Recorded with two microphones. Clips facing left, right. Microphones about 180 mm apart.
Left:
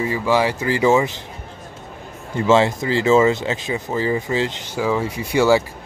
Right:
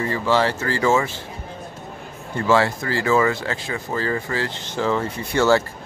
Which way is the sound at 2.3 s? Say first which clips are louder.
Left 3 dB; 20° left (ahead or behind).